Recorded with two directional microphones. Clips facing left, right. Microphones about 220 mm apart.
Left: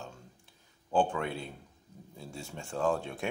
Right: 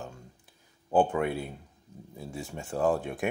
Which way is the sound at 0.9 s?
10° right (ahead or behind).